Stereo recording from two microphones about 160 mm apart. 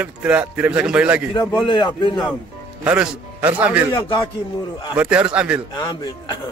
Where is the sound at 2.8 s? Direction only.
10° right (ahead or behind).